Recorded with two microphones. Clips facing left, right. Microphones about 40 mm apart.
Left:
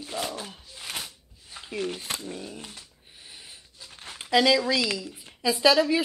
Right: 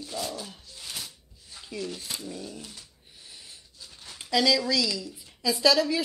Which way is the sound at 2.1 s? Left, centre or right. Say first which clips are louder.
Left 1 dB; left.